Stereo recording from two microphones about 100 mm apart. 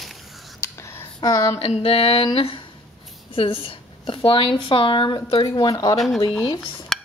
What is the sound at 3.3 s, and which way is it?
A woman's voice, 60° left (ahead or behind).